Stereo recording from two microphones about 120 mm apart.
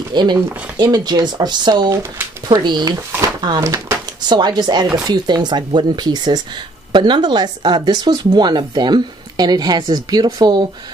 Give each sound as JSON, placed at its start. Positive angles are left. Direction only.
{"t": 0.1, "sound": "speech", "side_deg": -35}